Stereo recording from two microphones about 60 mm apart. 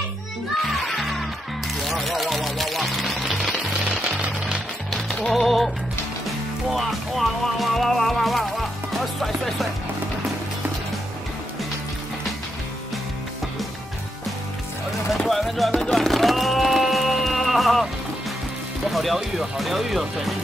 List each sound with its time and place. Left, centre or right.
0.6 s music: centre
3.8 s jackhammer: centre
5.3 s music: centre
6.7 s speech: centre
15.2 s speech: centre
15.7 s music: centre
18.9 s speech: centre